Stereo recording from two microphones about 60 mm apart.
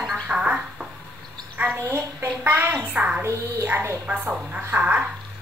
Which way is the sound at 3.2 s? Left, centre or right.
Right.